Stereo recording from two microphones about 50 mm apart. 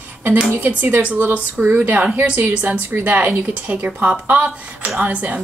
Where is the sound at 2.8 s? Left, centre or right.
Right.